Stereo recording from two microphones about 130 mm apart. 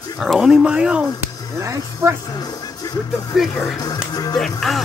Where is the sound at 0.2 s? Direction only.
5° right (ahead or behind).